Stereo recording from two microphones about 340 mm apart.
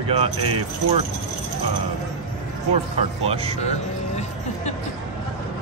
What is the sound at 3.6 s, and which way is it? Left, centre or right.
Music, centre.